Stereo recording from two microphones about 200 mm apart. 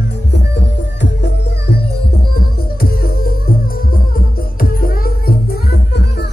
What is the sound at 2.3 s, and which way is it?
Music, 50° left (ahead or behind).